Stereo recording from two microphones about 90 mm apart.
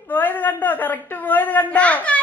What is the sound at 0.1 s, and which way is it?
A woman's voice, 20° left (ahead or behind).